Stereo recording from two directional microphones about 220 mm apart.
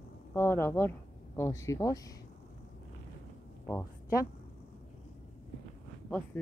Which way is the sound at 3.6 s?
15° left (ahead or behind).